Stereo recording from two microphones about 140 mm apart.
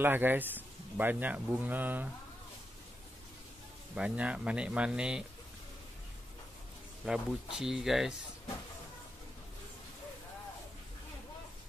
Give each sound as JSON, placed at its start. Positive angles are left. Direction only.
{"t": 0.0, "sound": "speech", "side_deg": -15}
{"t": 3.9, "sound": "speech", "side_deg": -10}
{"t": 7.0, "sound": "speech", "side_deg": -10}